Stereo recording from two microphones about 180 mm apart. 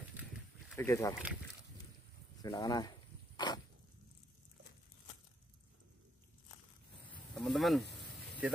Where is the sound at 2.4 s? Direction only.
20° left (ahead or behind).